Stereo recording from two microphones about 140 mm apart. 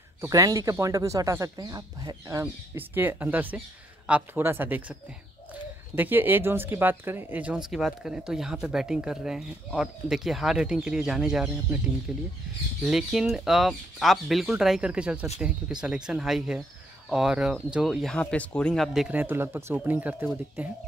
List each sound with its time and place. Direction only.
0.2 s speech: 25° right (ahead or behind)
2.4 s speech: 15° right (ahead or behind); by 18.9 s 10° left (ahead or behind)
18.9 s speech: 10° right (ahead or behind)